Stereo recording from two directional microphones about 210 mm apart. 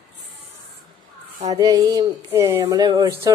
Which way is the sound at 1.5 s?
15° right (ahead or behind).